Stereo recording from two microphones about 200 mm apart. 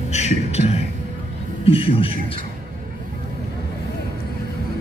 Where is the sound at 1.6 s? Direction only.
30° left (ahead or behind).